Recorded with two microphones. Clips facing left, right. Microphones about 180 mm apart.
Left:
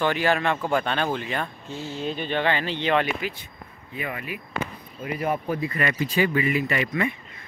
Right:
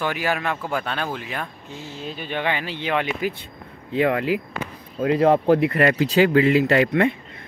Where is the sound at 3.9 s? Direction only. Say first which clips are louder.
Right 13 dB; 85° right.